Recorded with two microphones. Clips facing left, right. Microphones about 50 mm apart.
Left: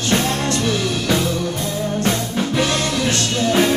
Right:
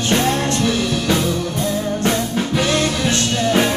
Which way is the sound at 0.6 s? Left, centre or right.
Centre.